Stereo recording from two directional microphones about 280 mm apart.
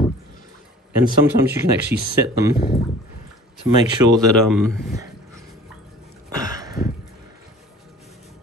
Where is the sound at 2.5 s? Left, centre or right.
Left.